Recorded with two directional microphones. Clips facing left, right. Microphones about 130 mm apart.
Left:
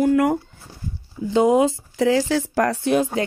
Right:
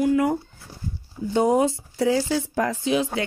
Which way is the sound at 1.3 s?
90° left.